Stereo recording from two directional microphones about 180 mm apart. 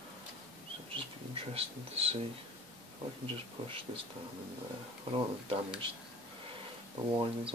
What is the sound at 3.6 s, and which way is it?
Speech, 30° right (ahead or behind).